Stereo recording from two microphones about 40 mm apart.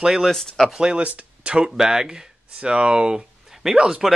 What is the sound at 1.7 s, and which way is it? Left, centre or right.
Speech, centre.